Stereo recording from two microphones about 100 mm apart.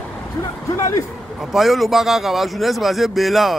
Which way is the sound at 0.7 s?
30° left (ahead or behind).